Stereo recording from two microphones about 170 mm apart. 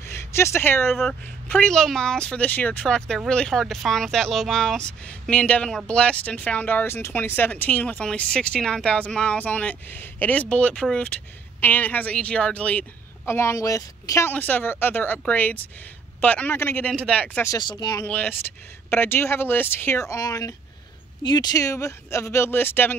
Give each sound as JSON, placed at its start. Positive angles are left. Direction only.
{"t": 0.0, "sound": "speech", "side_deg": 15}
{"t": 17.5, "sound": "speech", "side_deg": 25}
{"t": 18.0, "sound": "speech", "side_deg": 10}